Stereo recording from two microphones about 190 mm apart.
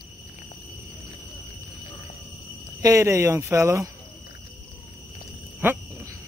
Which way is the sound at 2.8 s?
15° right (ahead or behind).